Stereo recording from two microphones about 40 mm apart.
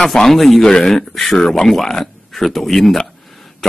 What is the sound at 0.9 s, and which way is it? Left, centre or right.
Speech, centre.